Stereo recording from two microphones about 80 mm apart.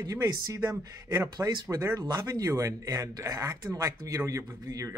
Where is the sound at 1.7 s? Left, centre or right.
Right.